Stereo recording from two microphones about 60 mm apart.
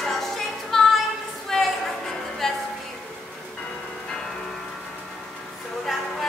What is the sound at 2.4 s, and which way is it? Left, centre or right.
Music, centre.